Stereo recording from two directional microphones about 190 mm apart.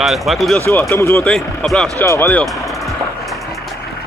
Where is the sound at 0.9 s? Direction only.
15° left (ahead or behind).